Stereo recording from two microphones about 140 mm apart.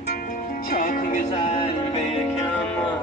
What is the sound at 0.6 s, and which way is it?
Music, 80° left.